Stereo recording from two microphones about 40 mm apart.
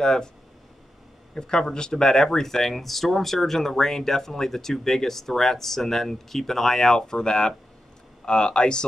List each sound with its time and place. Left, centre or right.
0.0 s speech: centre
1.3 s speech: centre